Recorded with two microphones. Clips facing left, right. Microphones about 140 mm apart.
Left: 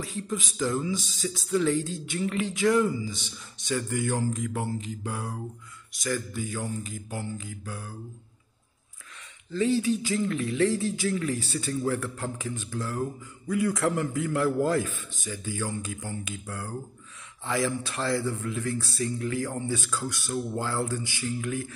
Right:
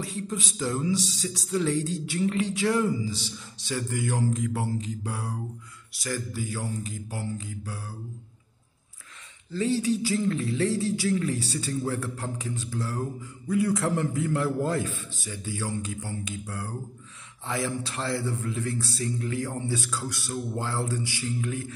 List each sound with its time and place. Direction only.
0.3 s a man's voice: 25° right (ahead or behind)
9.5 s a man's voice: 30° right (ahead or behind)